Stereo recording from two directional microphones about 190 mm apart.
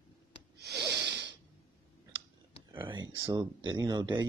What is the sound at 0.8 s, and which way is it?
Snort, 20° right (ahead or behind).